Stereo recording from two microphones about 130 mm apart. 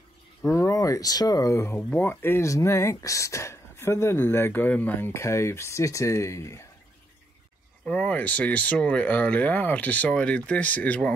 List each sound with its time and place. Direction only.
0.4 s speech: 20° left (ahead or behind)
7.8 s speech: 10° left (ahead or behind)